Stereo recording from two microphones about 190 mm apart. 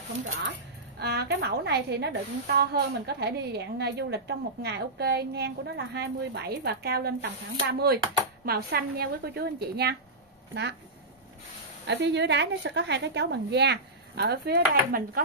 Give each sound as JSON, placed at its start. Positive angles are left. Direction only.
{"t": 0.9, "sound": "a woman's voice", "side_deg": -60}
{"t": 11.8, "sound": "a woman's voice", "side_deg": -65}